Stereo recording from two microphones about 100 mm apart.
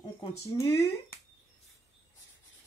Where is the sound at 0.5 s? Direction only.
30° left (ahead or behind).